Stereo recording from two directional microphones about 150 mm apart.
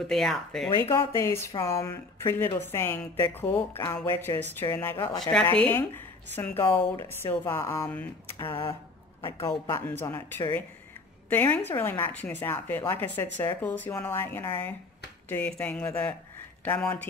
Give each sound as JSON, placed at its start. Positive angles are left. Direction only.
{"t": 0.1, "sound": "speech", "side_deg": 0}
{"t": 0.9, "sound": "speech", "side_deg": 20}